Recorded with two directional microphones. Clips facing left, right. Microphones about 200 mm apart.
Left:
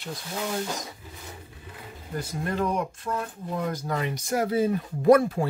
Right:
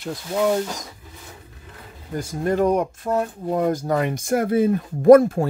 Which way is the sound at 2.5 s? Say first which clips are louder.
Right 8 dB; 50° right (ahead or behind).